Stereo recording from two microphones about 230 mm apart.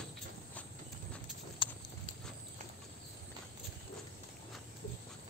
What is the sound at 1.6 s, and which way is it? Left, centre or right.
Clip-clop, left.